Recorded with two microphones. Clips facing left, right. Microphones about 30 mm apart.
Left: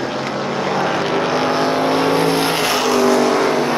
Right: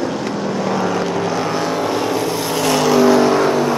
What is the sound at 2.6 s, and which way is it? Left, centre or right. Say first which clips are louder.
Vehicle: right 1 dB; centre.